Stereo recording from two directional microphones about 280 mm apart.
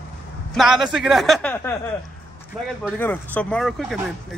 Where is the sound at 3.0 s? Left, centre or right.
Centre.